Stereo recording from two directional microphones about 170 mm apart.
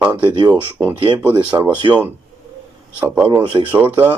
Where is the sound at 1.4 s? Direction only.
10° right (ahead or behind).